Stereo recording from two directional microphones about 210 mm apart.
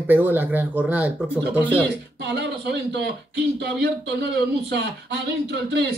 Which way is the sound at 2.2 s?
55° right (ahead or behind).